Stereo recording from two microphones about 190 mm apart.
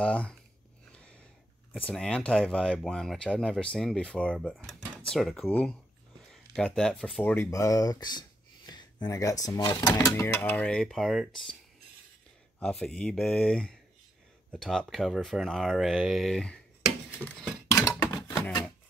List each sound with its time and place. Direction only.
0.0 s speech: 5° left (ahead or behind)
1.7 s speech: 5° left (ahead or behind)
12.5 s speech: 5° left (ahead or behind)
17.6 s a sound: 15° left (ahead or behind)